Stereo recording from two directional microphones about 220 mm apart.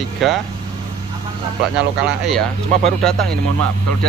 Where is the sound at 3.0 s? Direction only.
Centre (ahead or behind).